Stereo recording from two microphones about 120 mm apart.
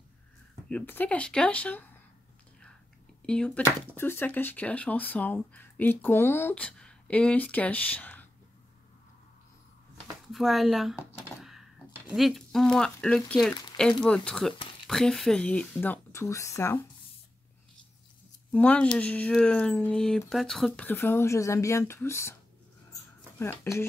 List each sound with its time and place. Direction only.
0.7 s speech: 15° left (ahead or behind)
3.2 s speech: 5° left (ahead or behind)
3.6 s speech: 20° left (ahead or behind)
10.3 s speech: centre (ahead or behind); by 16.8 s 25° left (ahead or behind)
18.5 s speech: 10° left (ahead or behind)
20.8 s speech: 15° left (ahead or behind)
23.4 s speech: 20° left (ahead or behind)